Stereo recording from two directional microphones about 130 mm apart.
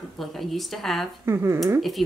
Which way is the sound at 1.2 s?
20° right (ahead or behind).